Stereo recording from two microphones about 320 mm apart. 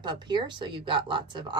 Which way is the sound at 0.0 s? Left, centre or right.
Centre.